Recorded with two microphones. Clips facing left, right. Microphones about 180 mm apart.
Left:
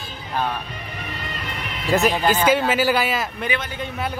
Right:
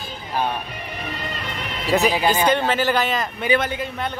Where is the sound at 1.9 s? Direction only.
Centre (ahead or behind).